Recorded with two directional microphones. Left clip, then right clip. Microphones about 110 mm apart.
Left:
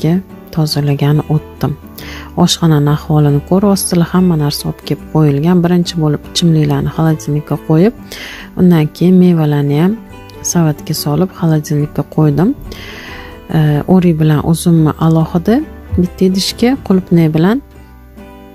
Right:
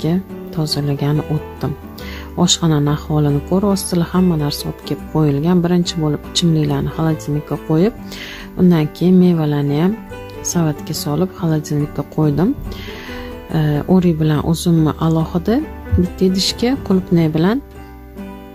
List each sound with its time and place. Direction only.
0.0 s speech: 45° left (ahead or behind)
1.6 s music: 55° left (ahead or behind)
2.3 s speech: 40° left (ahead or behind)
13.5 s speech: 40° left (ahead or behind)